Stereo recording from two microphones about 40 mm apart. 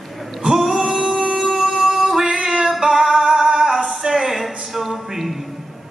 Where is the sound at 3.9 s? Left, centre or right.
Centre.